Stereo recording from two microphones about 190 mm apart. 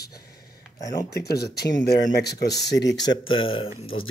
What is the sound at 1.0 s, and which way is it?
Speech, 55° left (ahead or behind).